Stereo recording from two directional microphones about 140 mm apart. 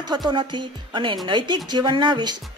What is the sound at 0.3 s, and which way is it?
Speech, 35° right (ahead or behind).